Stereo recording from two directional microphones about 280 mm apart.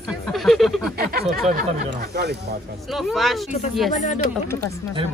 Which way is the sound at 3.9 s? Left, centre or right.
Left.